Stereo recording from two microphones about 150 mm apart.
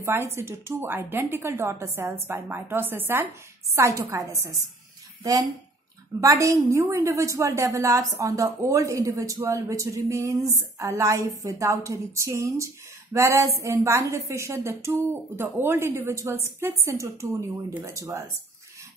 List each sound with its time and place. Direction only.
0.0 s a woman's voice: 15° right (ahead or behind)